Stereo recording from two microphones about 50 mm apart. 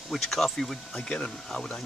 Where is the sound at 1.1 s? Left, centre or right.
Centre.